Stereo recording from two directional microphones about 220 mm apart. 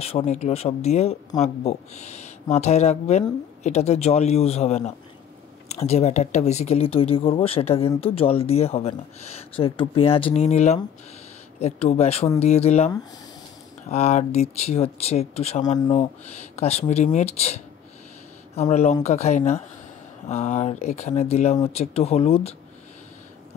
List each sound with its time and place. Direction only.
0.0 s speech: 30° left (ahead or behind)
18.6 s speech: 30° left (ahead or behind)